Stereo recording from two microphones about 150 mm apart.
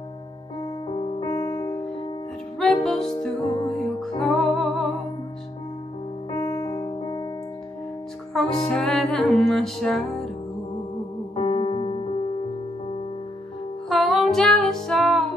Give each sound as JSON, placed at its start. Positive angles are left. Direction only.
{"t": 0.6, "sound": "music", "side_deg": 35}
{"t": 1.2, "sound": "music", "side_deg": 25}
{"t": 2.6, "sound": "music", "side_deg": 5}
{"t": 6.3, "sound": "piano", "side_deg": 25}
{"t": 8.3, "sound": "music", "side_deg": 5}
{"t": 11.3, "sound": "electric piano", "side_deg": 40}
{"t": 13.8, "sound": "music", "side_deg": 0}